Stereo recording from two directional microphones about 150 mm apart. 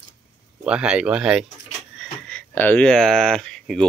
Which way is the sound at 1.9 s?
5° left (ahead or behind).